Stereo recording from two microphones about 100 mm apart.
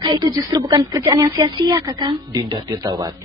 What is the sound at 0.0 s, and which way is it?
Speech, 40° right (ahead or behind).